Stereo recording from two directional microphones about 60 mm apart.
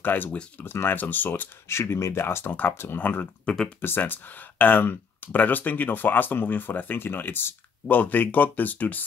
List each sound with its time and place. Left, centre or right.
0.0 s speech: left
0.3 s speech: left
0.7 s speech: left
1.7 s speech: left
2.2 s speech: left
3.5 s speech: left
3.8 s speech: left